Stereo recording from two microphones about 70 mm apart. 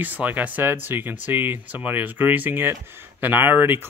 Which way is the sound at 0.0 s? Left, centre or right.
Right.